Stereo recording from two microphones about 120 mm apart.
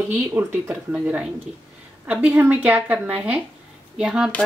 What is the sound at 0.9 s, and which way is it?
A woman's voice, 5° right (ahead or behind).